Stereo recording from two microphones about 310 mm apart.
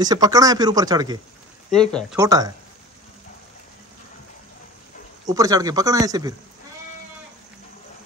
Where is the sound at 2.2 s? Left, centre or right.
Centre.